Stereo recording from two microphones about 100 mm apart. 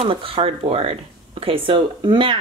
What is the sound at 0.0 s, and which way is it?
A woman's voice, 65° right (ahead or behind).